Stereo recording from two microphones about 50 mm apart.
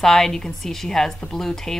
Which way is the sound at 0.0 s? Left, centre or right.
Centre.